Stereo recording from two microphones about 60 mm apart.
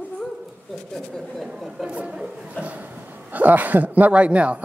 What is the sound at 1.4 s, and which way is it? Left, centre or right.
Chatter, centre.